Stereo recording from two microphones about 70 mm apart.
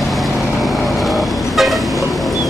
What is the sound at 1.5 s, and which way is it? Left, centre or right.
Vehicle, centre.